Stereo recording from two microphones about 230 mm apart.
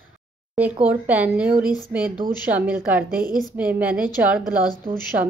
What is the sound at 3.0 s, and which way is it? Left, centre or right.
Speech, right.